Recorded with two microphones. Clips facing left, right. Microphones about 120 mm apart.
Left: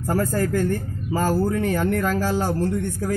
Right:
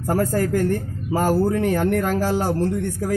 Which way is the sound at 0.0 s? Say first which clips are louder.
Right 2 dB; 10° right (ahead or behind).